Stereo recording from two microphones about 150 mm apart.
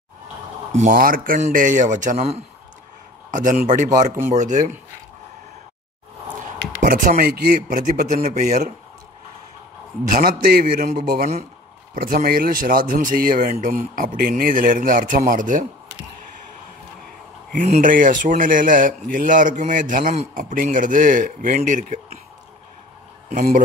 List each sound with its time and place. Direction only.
0.7 s speech: 65° right (ahead or behind)
3.3 s speech: 60° right (ahead or behind)
6.8 s speech: 65° right (ahead or behind)
10.0 s speech: 70° right (ahead or behind)
11.9 s speech: 70° right (ahead or behind)
17.5 s speech: 50° right (ahead or behind)
17.8 s speech: 65° right (ahead or behind)
23.3 s speech: 60° right (ahead or behind)